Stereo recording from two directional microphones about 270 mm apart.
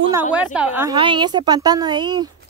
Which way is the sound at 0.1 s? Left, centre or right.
Centre.